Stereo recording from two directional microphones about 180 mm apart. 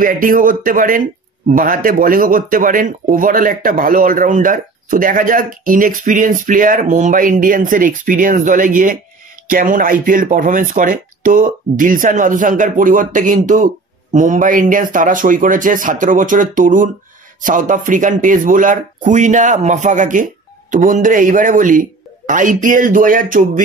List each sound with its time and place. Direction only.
0.0 s speech: 50° right (ahead or behind)